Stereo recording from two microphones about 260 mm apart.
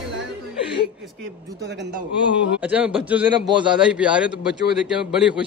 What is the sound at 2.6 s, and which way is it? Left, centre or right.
Speech, centre.